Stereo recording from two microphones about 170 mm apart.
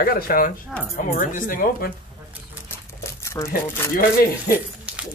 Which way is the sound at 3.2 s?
15° left (ahead or behind).